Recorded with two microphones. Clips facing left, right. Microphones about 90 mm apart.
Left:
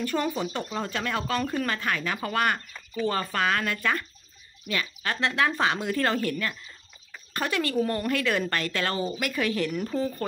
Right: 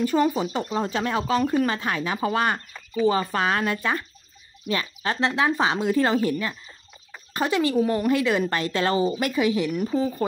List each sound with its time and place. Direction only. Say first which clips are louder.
0.0 s speech: right 7 dB; 15° right (ahead or behind)
0.7 s a woman's voice: right 5 dB; 30° right (ahead or behind)
1.2 s speech: right 6 dB; 15° right (ahead or behind)
1.7 s a woman's voice: right 3 dB; 25° right (ahead or behind)
2.7 s speech: right 6 dB; 10° right (ahead or behind)
3.3 s a woman's voice: right 3 dB; 25° right (ahead or behind); by 10.2 s 10° right (ahead or behind)